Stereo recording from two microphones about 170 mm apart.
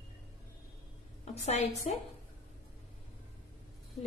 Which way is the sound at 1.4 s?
40° left (ahead or behind).